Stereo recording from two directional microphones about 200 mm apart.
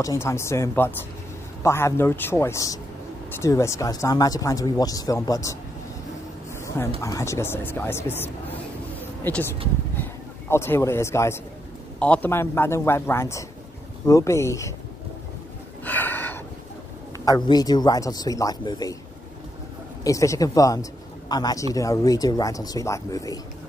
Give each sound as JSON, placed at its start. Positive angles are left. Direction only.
{"t": 0.0, "sound": "speech", "side_deg": 15}
{"t": 6.5, "sound": "a sound", "side_deg": 10}
{"t": 7.0, "sound": "speech", "side_deg": 15}
{"t": 15.8, "sound": "a sound", "side_deg": 10}
{"t": 17.2, "sound": "a man's voice", "side_deg": 20}
{"t": 20.0, "sound": "a man's voice", "side_deg": 15}